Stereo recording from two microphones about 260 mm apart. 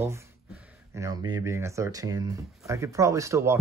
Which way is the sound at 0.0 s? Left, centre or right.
Centre.